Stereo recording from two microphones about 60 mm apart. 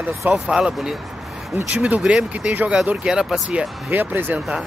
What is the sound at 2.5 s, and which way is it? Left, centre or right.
Speech, right.